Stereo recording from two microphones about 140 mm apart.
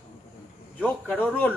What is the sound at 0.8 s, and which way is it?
Speech, 10° left (ahead or behind).